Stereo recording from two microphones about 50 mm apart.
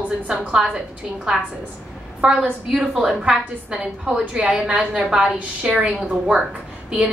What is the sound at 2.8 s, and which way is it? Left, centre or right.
Speech, centre.